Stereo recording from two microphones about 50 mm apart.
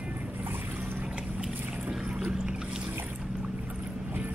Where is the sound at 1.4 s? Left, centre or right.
Centre.